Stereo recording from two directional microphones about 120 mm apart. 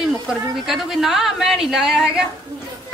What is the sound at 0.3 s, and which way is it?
Speech, 5° right (ahead or behind).